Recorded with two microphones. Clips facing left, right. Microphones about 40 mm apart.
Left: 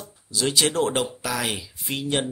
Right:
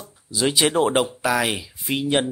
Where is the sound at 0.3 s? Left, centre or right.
Centre.